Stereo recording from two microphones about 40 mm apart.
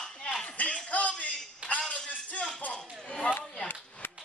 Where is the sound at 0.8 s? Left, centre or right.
Left.